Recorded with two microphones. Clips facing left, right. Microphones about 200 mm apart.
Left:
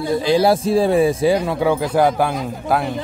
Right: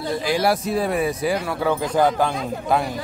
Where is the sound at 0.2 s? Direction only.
25° left (ahead or behind).